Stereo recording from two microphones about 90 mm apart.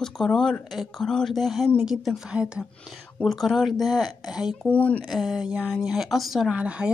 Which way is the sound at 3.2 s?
5° left (ahead or behind).